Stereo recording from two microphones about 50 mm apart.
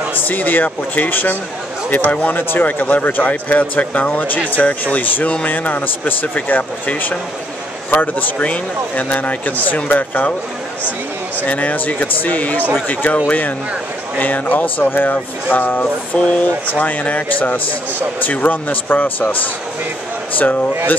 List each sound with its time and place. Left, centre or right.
0.2 s speech: left
11.4 s speech: left
14.2 s speech: left
15.8 s speech: left
16.8 s speech: left